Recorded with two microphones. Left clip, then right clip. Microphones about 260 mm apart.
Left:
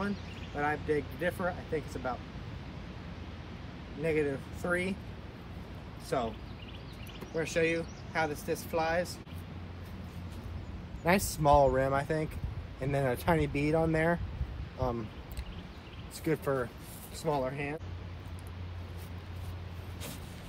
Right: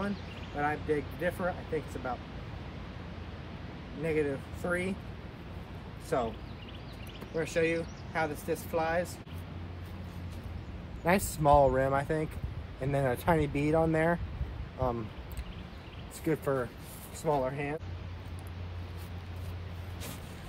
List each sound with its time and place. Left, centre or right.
0.6 s speech: centre
4.0 s speech: centre
6.0 s speech: centre
7.3 s speech: centre
11.0 s speech: centre
16.3 s speech: centre